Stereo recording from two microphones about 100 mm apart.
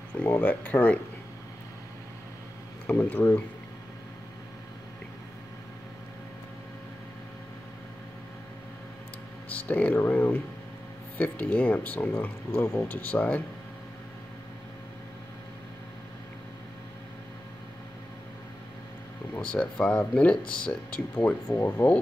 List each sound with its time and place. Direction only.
0.2 s speech: 15° left (ahead or behind)
2.9 s speech: 15° left (ahead or behind)
9.5 s speech: 15° left (ahead or behind)
19.3 s speech: 15° left (ahead or behind)